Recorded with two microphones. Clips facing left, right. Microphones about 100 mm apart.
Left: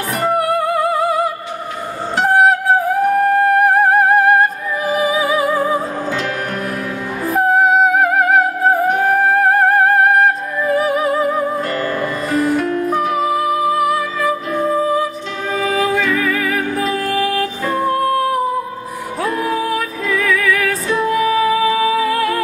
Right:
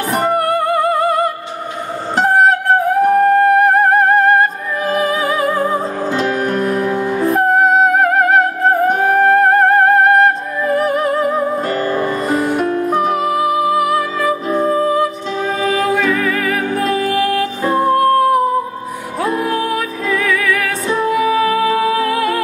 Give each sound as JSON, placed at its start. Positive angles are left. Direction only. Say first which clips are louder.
{"t": 0.2, "sound": "music", "louder": "left 1 dB", "side_deg": 0}
{"t": 6.1, "sound": "music", "louder": "right 5 dB", "side_deg": -35}
{"t": 7.2, "sound": "music", "louder": "even", "side_deg": 0}
{"t": 11.7, "sound": "music", "louder": "right 2 dB", "side_deg": -30}
{"t": 12.3, "sound": "music", "louder": "left 2 dB", "side_deg": 0}
{"t": 12.6, "sound": "music", "louder": "right 1 dB", "side_deg": -30}
{"t": 12.9, "sound": "music", "louder": "even", "side_deg": 0}